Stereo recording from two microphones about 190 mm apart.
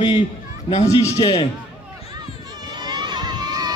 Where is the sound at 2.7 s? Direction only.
25° right (ahead or behind).